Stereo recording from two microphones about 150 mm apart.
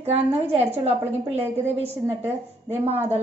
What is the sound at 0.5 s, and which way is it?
A woman's voice, 45° right (ahead or behind).